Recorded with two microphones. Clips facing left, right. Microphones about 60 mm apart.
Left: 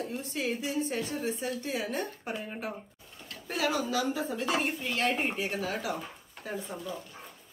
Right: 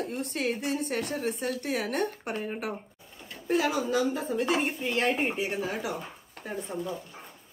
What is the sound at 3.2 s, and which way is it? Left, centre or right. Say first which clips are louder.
Speech: right 4 dB; centre.